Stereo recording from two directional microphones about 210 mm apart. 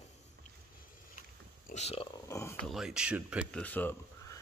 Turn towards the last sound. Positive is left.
turn(degrees=10)  # may be behind; listen again after turning